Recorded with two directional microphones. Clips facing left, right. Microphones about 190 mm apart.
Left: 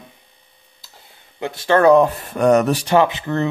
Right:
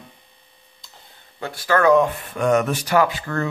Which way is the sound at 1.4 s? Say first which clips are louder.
Left 4 dB; 25° left (ahead or behind).